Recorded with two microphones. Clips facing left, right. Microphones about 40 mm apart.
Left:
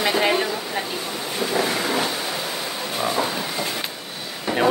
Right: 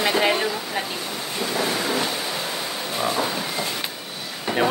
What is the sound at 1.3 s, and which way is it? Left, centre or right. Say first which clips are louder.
Waves: left 2 dB; centre.